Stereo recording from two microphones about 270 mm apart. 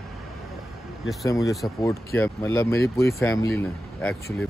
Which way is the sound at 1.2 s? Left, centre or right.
Centre.